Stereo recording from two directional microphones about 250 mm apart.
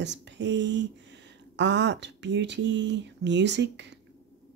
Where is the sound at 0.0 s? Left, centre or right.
Right.